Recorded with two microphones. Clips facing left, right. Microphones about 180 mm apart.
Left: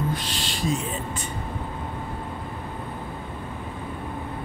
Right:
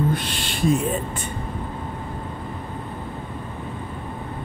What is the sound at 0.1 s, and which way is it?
Owl, 55° right (ahead or behind).